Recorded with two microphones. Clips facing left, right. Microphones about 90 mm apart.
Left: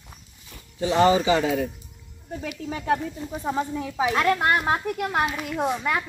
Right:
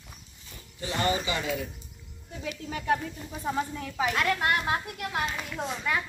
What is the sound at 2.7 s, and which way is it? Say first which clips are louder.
Speech: left 3 dB; 30° left (ahead or behind).